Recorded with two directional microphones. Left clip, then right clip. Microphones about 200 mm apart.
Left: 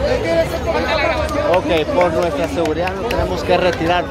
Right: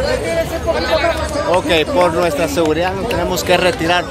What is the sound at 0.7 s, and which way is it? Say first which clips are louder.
Chatter: right 1 dB; 55° left (ahead or behind).